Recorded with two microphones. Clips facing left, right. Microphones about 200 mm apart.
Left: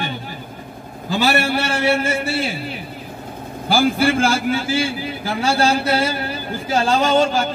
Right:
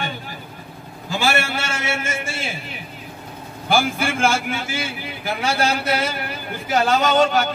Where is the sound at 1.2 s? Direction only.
40° left (ahead or behind).